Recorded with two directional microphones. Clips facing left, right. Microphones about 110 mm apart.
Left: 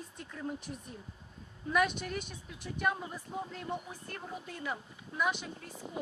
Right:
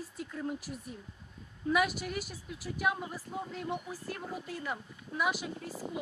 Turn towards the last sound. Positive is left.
turn(degrees=-5)  # may be behind; listen again after turning